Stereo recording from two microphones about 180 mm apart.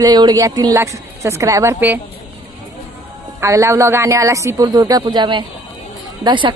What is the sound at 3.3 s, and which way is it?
A man's voice, 15° right (ahead or behind).